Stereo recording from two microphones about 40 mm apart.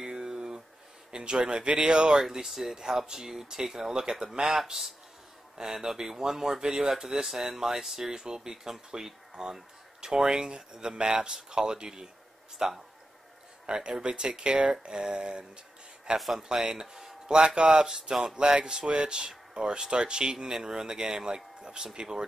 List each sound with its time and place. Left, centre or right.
0.0 s a sound: centre
1.1 s speech: right
2.2 s speech: centre
5.6 s speech: centre